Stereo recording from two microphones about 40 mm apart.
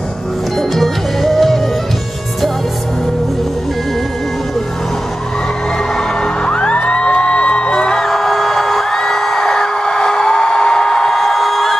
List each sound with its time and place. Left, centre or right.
0.6 s music: centre
5.9 s music: left
8.1 s a sound: centre